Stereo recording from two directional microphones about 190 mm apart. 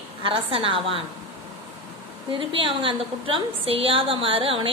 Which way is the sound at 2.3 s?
25° right (ahead or behind).